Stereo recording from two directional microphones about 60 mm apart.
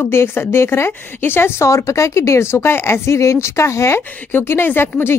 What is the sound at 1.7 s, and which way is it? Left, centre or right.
Speech, left.